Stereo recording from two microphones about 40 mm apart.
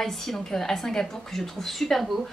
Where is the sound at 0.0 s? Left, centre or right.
Centre.